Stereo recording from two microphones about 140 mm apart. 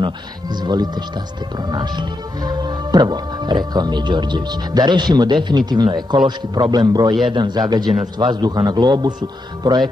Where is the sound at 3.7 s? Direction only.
30° right (ahead or behind).